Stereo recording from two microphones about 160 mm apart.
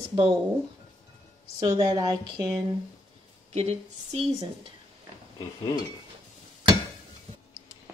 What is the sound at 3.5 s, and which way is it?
Speech, 40° right (ahead or behind).